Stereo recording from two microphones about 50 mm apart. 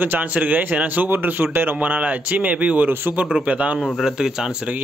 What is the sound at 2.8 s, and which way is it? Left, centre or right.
Speech, right.